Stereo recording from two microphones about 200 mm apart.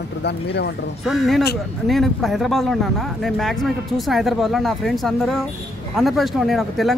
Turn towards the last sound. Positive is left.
turn(degrees=0)  # may be behind; listen again after turning